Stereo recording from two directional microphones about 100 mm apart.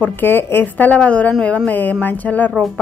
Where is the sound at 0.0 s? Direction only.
20° left (ahead or behind).